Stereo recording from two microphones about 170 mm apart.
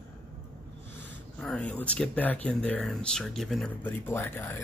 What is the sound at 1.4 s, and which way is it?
Speech, 5° left (ahead or behind).